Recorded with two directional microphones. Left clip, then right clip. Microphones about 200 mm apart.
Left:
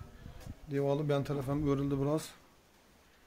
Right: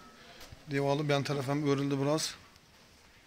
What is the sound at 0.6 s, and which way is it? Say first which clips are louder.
Speech: right 2 dB; 10° right (ahead or behind).